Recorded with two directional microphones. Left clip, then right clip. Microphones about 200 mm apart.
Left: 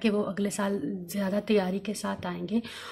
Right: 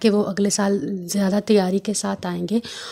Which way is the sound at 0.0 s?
45° right (ahead or behind).